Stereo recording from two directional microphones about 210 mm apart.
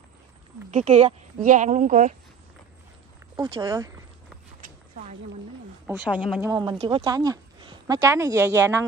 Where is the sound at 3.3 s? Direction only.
20° right (ahead or behind).